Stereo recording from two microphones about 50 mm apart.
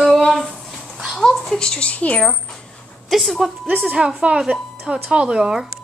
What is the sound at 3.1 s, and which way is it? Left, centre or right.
Speech, centre.